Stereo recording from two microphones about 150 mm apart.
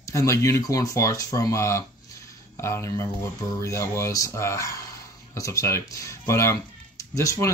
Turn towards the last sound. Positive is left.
turn(degrees=20)  # may be behind; listen again after turning